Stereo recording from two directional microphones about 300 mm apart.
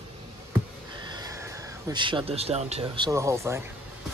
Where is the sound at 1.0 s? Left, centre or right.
Centre.